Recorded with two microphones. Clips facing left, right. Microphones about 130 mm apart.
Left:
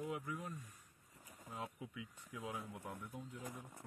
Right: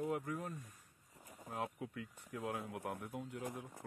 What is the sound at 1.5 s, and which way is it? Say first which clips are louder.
Speech: right 5 dB; 60° right (ahead or behind).